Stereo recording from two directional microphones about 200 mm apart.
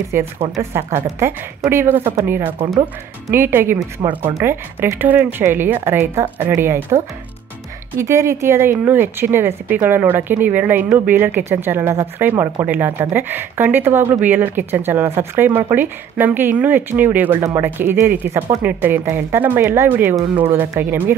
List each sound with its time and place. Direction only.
0.1 s speech: 10° right (ahead or behind)
8.0 s speech: 15° right (ahead or behind)